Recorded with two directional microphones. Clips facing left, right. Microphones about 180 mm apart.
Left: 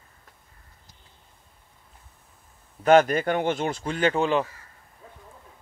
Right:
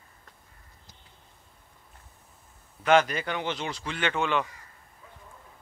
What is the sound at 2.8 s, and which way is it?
Speech, 45° left (ahead or behind).